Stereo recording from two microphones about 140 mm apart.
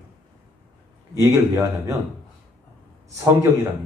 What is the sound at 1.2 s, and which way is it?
Speech, 20° right (ahead or behind).